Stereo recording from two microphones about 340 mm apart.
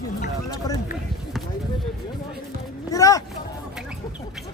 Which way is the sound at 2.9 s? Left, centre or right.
Centre.